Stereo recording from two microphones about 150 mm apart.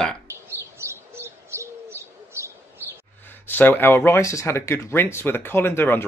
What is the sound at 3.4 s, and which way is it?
Speech, 15° left (ahead or behind).